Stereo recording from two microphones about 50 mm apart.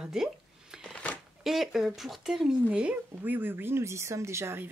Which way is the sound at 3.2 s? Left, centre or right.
Right.